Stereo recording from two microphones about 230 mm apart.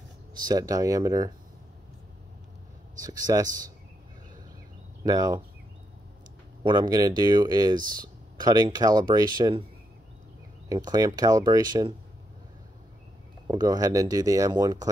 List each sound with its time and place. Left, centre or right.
0.5 s speech: centre
3.0 s speech: centre
5.0 s speech: centre
6.6 s speech: centre
10.7 s speech: centre
13.5 s speech: centre